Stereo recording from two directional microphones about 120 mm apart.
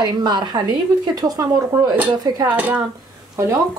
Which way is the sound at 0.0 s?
35° right (ahead or behind).